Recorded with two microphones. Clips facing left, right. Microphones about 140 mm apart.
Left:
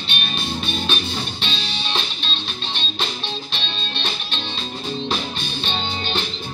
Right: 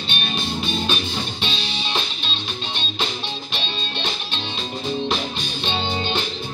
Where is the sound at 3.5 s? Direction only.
15° right (ahead or behind).